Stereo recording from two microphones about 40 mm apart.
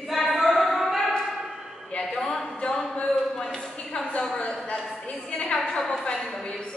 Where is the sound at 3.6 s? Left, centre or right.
Left.